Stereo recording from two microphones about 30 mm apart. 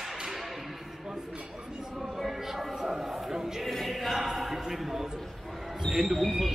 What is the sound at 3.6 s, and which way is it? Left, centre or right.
Choir, centre.